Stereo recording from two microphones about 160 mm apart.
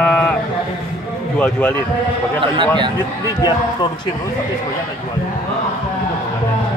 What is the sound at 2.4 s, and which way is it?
Speech, 30° right (ahead or behind).